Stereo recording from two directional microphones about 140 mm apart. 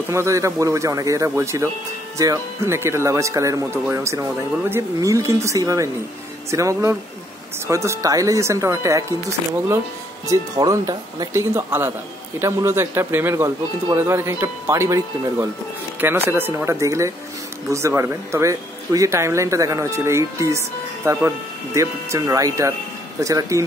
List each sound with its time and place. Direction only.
0.1 s speech: 20° right (ahead or behind)